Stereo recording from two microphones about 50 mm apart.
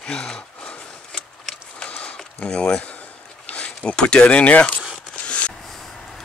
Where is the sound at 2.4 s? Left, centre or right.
Centre.